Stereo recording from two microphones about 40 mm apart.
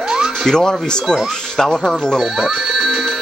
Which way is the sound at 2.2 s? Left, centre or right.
Centre.